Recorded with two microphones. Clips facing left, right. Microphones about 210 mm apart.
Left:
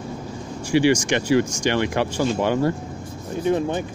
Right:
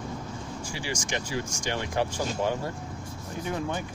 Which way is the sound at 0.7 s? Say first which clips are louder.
Left 18 dB; 75° left (ahead or behind).